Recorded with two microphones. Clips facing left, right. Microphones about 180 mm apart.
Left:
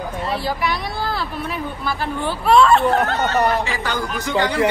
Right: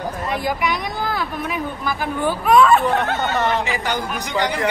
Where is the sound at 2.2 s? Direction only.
10° right (ahead or behind).